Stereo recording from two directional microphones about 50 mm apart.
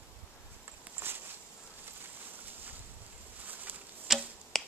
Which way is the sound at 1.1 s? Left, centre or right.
Right.